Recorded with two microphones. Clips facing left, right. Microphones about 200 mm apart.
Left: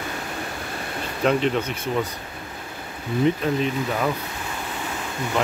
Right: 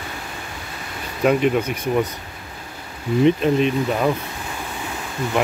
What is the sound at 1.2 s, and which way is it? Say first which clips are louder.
Speech: right 4 dB; 10° right (ahead or behind).